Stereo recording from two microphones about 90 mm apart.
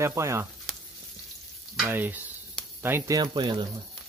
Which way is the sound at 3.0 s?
40° right (ahead or behind).